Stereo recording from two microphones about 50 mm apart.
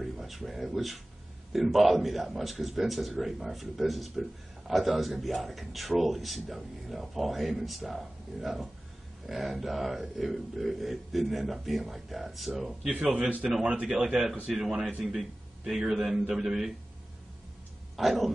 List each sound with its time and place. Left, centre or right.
0.0 s a man's voice: centre
17.9 s a man's voice: centre